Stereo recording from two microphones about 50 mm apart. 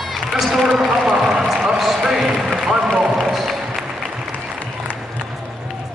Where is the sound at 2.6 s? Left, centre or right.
Centre.